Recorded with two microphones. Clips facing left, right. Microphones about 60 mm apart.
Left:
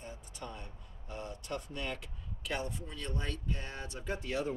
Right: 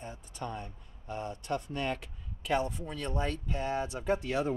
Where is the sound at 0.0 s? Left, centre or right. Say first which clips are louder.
Right 5 dB; right.